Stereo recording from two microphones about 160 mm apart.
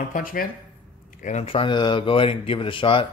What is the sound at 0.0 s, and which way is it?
Speech, 60° left (ahead or behind).